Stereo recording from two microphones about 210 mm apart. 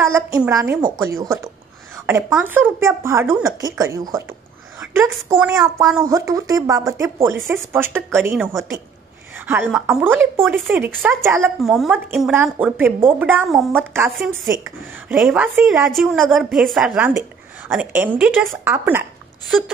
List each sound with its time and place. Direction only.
0.0 s a woman's voice: 15° right (ahead or behind)
9.5 s a woman's voice: 5° right (ahead or behind)